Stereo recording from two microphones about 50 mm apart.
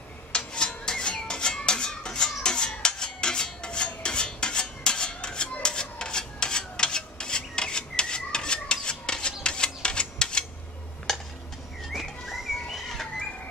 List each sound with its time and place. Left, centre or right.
0.3 s rub: centre
11.1 s a sound: centre
11.9 s bird: centre